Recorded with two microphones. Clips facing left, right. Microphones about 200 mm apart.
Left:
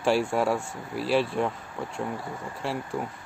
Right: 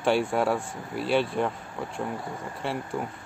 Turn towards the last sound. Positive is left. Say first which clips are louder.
# even
turn(degrees=0)  # may be behind; listen again after turning